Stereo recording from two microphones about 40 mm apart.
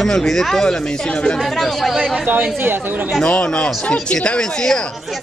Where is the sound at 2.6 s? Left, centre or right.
Right.